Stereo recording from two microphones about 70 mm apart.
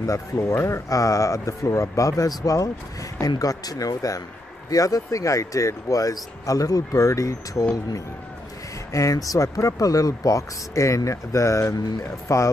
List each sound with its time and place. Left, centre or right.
0.0 s speech: left
8.9 s speech: left